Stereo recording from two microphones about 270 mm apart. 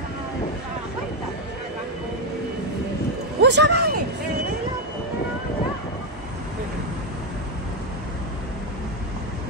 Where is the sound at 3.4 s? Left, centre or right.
Right.